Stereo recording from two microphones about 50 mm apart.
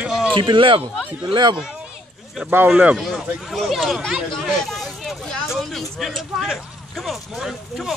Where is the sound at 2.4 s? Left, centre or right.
Right.